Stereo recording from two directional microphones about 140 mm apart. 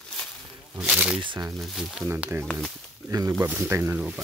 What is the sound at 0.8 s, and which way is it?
Speech, 10° right (ahead or behind).